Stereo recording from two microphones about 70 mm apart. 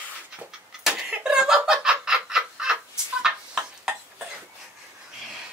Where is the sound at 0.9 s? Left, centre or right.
Centre.